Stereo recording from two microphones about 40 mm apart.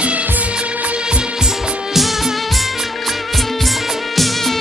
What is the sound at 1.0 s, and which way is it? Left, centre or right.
Music, centre.